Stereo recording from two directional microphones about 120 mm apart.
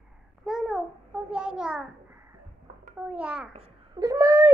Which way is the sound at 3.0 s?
10° right (ahead or behind).